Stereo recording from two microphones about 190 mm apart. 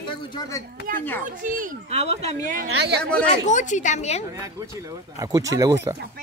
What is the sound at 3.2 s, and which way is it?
Speech, 40° left (ahead or behind).